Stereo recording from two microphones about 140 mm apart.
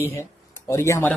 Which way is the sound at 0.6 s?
20° left (ahead or behind).